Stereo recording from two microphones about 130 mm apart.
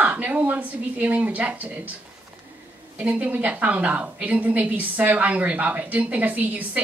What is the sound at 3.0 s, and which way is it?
A woman's voice, 10° right (ahead or behind).